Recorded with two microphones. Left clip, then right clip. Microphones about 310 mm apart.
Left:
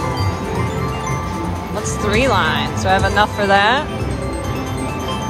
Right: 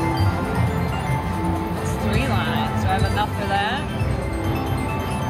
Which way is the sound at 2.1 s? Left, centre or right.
Left.